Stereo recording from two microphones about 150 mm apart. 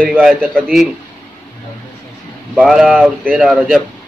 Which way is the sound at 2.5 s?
5° right (ahead or behind).